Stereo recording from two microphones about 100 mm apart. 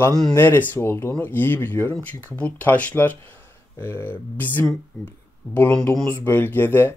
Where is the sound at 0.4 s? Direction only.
20° left (ahead or behind).